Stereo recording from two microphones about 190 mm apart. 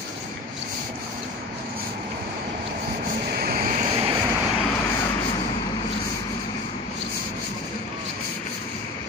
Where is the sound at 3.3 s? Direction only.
50° right (ahead or behind); by 4.0 s 35° right (ahead or behind).